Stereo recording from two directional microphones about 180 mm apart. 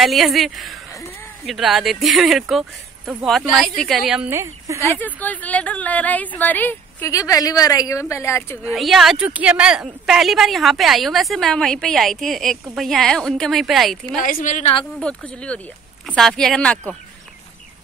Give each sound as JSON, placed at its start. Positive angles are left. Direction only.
{"t": 0.0, "sound": "speech", "side_deg": 0}
{"t": 4.3, "sound": "speech", "side_deg": -15}
{"t": 4.7, "sound": "a woman's voice", "side_deg": 10}
{"t": 8.6, "sound": "speech", "side_deg": 0}
{"t": 14.2, "sound": "a woman's voice", "side_deg": 45}
{"t": 15.0, "sound": "a woman's voice", "side_deg": 5}